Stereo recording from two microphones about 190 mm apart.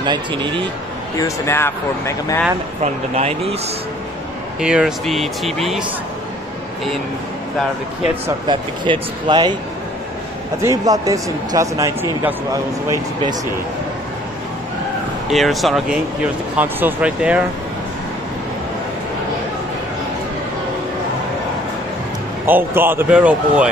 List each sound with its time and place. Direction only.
0.0 s speech: 25° right (ahead or behind)
1.1 s speech: 15° left (ahead or behind)
2.8 s speech: 35° right (ahead or behind)
4.6 s speech: 5° right (ahead or behind)
8.5 s speech: 25° right (ahead or behind)
10.6 s speech: 15° right (ahead or behind)
15.2 s speech: centre (ahead or behind)
22.5 s speech: 10° right (ahead or behind)